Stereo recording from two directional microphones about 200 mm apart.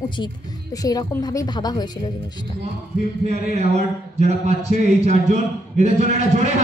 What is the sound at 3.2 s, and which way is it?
A man's voice, 35° right (ahead or behind).